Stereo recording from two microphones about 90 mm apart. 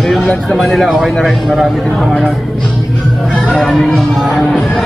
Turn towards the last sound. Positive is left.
turn(degrees=0)  # may be behind; listen again after turning